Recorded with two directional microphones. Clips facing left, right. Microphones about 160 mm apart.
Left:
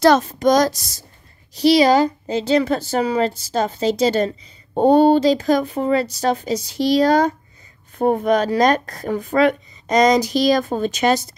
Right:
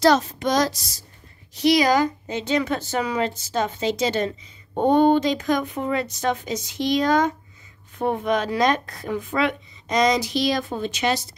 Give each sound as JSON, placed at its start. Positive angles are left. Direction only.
{"t": 0.0, "sound": "speech", "side_deg": 50}
{"t": 1.5, "sound": "a woman's voice", "side_deg": 30}